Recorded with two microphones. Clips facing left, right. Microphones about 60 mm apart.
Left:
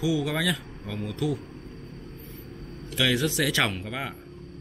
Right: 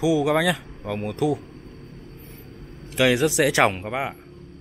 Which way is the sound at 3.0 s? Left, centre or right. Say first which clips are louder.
Right 6 dB; right.